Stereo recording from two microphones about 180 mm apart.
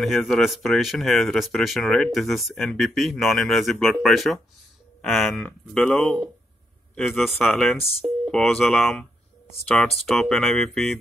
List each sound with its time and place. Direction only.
0.0 s speech: centre (ahead or behind)